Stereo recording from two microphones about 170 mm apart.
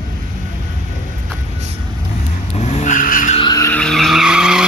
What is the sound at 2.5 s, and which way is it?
Vehicle, 40° left (ahead or behind).